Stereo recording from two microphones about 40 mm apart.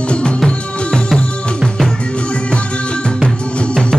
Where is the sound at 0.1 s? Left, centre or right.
Left.